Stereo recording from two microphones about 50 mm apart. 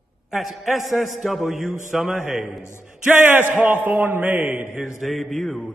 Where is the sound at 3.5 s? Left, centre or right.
Right.